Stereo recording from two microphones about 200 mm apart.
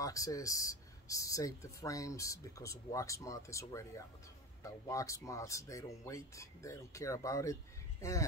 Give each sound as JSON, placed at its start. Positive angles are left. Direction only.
{"t": 0.0, "sound": "speech", "side_deg": 15}